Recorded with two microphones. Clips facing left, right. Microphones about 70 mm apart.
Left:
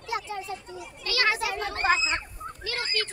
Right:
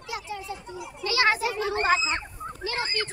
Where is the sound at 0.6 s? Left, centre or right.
Centre.